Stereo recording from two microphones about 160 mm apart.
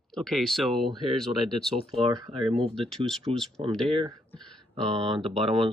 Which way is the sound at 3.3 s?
5° left (ahead or behind).